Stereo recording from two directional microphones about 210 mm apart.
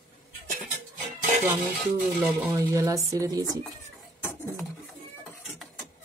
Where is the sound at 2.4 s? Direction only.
15° right (ahead or behind).